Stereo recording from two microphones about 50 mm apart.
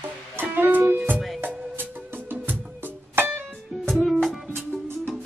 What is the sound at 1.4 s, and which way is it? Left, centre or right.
Music, right.